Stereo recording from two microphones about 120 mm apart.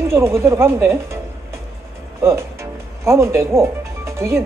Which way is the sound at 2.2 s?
25° right (ahead or behind).